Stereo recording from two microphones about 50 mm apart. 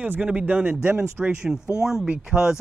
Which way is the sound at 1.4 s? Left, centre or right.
Centre.